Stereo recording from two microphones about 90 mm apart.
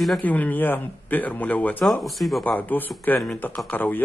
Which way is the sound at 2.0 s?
Centre (ahead or behind).